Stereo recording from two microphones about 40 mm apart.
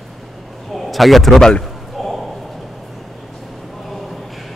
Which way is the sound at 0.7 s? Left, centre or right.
Centre.